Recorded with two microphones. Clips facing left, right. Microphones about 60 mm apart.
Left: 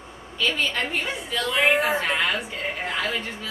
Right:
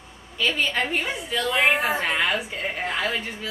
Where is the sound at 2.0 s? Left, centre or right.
Centre.